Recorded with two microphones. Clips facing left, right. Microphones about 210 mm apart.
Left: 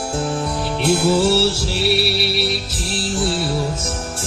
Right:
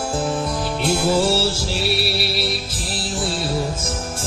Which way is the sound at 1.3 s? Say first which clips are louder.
Left 3 dB; 65° left (ahead or behind).